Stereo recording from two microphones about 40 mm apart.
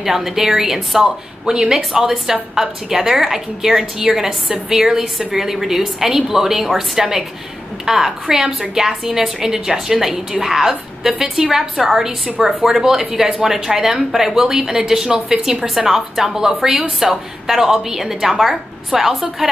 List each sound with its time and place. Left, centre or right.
0.0 s speech: centre